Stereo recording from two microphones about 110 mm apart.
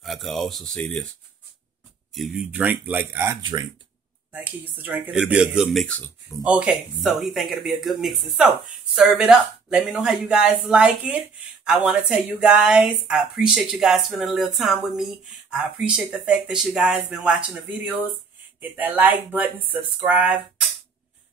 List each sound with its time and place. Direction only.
0.0 s speech: centre (ahead or behind)
2.1 s speech: centre (ahead or behind)
2.5 s speech: 15° right (ahead or behind)
5.9 s speech: 15° left (ahead or behind)
6.4 s speech: 10° right (ahead or behind)